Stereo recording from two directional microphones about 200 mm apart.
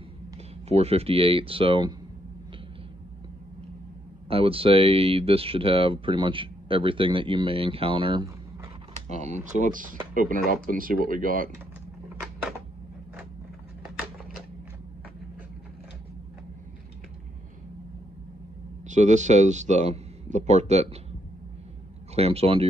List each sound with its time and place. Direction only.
0.7 s speech: 30° right (ahead or behind)
4.3 s speech: 25° right (ahead or behind)
9.2 s speech: 40° right (ahead or behind)
12.2 s a sound: 5° right (ahead or behind)
18.9 s speech: 35° right (ahead or behind)
22.1 s speech: 30° right (ahead or behind)